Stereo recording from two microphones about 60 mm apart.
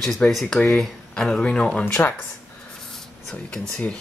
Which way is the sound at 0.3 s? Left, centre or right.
Centre.